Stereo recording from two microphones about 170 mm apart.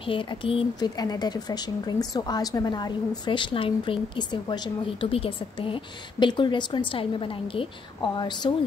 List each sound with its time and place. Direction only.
0.0 s speech: 30° left (ahead or behind)